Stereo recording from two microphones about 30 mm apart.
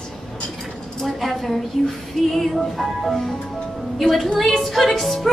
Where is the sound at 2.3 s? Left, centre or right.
Centre.